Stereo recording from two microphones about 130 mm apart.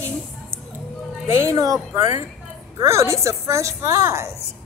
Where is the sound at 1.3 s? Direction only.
25° right (ahead or behind).